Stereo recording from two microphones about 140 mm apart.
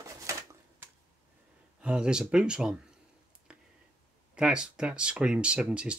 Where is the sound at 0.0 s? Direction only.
20° right (ahead or behind).